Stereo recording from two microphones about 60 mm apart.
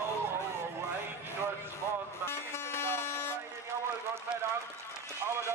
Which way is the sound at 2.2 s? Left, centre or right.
Left.